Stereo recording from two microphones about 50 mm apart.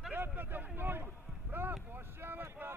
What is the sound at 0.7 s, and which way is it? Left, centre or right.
Boat, right.